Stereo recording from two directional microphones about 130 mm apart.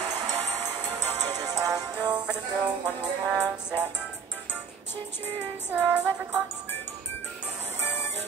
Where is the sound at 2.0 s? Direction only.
5° right (ahead or behind).